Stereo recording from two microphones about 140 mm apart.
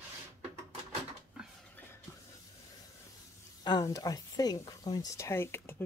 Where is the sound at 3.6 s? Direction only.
30° left (ahead or behind).